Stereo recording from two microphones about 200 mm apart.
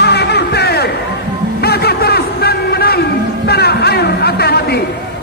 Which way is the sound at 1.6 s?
50° left (ahead or behind).